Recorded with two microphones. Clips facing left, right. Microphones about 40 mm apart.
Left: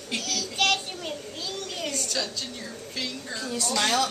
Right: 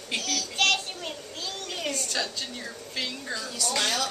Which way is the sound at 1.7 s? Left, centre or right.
Centre.